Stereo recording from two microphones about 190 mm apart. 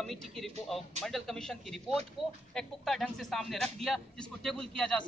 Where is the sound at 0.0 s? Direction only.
Centre (ahead or behind).